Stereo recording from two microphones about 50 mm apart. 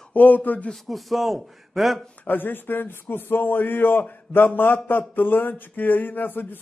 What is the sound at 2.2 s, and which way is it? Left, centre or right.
A man's voice, left.